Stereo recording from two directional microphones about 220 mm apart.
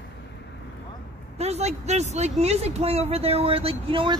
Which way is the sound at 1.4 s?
30° right (ahead or behind).